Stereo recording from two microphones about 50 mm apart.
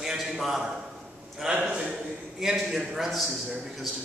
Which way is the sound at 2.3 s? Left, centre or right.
Centre.